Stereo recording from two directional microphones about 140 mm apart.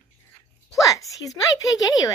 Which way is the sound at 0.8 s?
25° left (ahead or behind).